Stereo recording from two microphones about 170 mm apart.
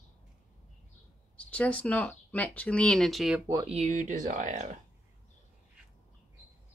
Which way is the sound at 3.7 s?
45° right (ahead or behind).